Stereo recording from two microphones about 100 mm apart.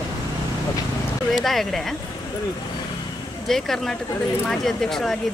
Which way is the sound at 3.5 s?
5° left (ahead or behind).